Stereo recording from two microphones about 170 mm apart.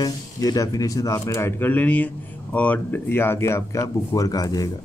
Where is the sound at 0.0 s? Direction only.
20° left (ahead or behind).